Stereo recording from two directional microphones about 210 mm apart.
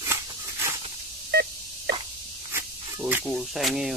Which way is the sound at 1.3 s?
50° right (ahead or behind).